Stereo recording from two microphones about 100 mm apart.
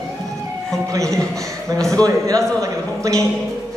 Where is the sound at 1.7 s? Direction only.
5° left (ahead or behind).